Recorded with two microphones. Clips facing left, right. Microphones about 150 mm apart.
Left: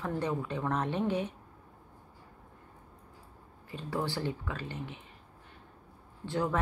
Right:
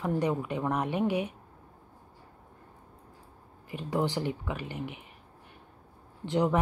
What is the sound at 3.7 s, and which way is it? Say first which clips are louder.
A woman's voice: right 5 dB; 15° right (ahead or behind).